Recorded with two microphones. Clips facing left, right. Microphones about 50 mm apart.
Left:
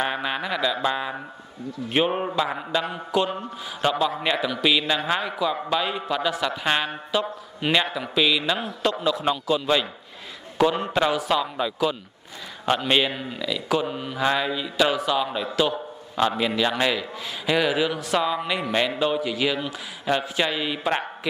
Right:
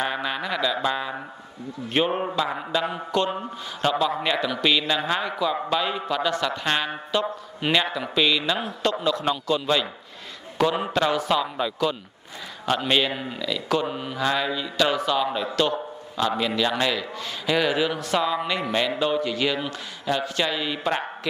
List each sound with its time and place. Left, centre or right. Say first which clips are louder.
0.0 s mantra: left 1 dB; centre
2.7 s a man's voice: even; centre
11.0 s a man's voice: even; centre
12.6 s mantra: left 1 dB; centre
13.1 s a man's voice: even; centre
14.2 s mantra: left 1 dB; centre
15.2 s a man's voice: even; centre
20.1 s mantra: left 1 dB; centre